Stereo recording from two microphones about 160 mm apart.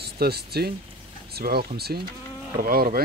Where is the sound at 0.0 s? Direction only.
85° right.